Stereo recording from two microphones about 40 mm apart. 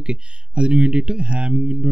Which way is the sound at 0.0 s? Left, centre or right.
Right.